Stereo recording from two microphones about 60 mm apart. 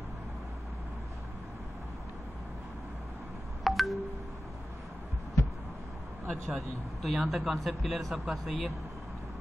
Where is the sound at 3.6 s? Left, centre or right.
Centre.